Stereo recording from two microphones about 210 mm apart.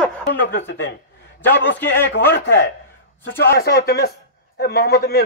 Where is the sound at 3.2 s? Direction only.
50° left (ahead or behind).